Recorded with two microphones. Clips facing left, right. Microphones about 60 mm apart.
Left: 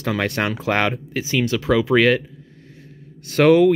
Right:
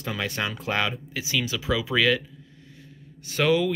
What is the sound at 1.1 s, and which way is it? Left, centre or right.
Speech, left.